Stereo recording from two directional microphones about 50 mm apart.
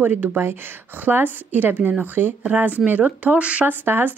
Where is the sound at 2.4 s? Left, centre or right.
Right.